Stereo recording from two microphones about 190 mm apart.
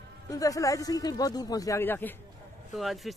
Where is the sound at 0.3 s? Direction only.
15° left (ahead or behind).